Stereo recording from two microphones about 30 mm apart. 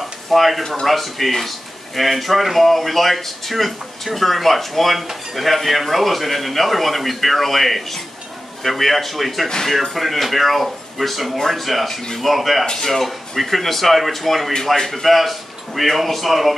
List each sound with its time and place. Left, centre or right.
0.3 s speech: centre
12.6 s speech: centre
13.0 s speech: centre